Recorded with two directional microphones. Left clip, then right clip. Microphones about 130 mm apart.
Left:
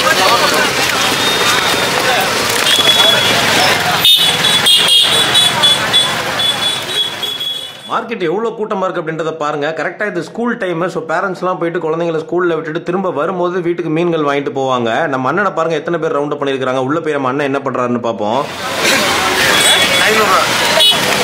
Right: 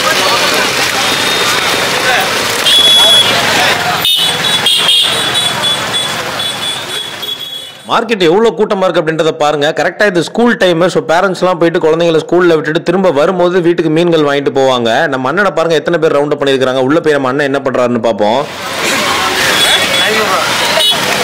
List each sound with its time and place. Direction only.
0.0 s a sound: centre (ahead or behind)
1.2 s vehicle: centre (ahead or behind)
7.9 s a man's voice: 40° right (ahead or behind)
19.4 s vehicle: centre (ahead or behind)